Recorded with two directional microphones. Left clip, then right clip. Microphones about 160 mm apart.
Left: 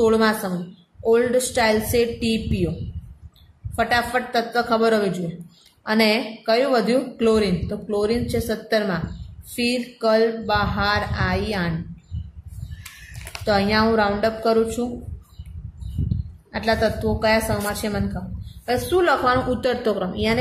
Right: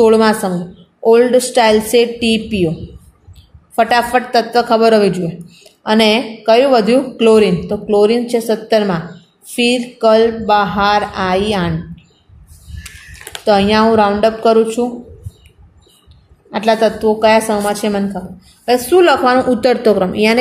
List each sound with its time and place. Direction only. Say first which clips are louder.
0.0 s a woman's voice: right 8 dB; 30° right (ahead or behind)
3.7 s a woman's voice: right 9 dB; 35° right (ahead or behind)
13.5 s a woman's voice: right 8 dB; 30° right (ahead or behind)
16.4 s a woman's voice: right 8 dB; 30° right (ahead or behind)
18.7 s a woman's voice: right 9 dB; 40° right (ahead or behind)